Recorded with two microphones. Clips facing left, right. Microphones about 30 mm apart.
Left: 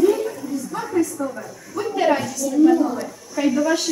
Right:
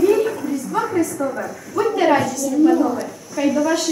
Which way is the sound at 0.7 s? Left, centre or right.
Right.